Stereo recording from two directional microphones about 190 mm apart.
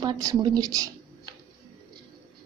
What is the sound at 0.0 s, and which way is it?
Speech, 20° right (ahead or behind).